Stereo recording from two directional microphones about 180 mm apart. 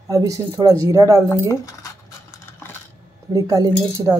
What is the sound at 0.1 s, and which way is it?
Speech, 15° right (ahead or behind).